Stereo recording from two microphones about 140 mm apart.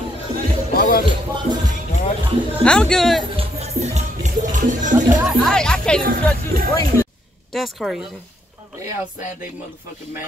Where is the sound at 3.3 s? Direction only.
50° right (ahead or behind).